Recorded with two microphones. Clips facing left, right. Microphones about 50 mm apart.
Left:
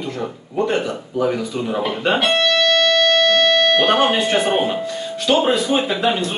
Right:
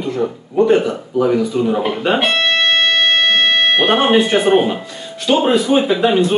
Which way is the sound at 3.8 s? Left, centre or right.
Centre.